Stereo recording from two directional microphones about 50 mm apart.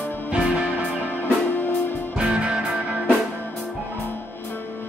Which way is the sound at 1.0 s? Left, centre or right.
Left.